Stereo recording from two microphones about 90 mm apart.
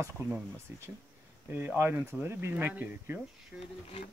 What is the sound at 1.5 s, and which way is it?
Speech, 25° right (ahead or behind).